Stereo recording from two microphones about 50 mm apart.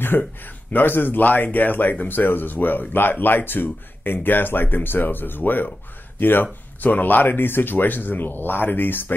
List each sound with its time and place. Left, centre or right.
0.7 s speech: left